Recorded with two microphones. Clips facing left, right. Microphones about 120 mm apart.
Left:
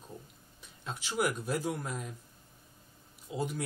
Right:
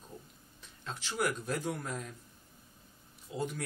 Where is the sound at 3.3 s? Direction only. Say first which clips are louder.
Left 1 dB; 15° left (ahead or behind).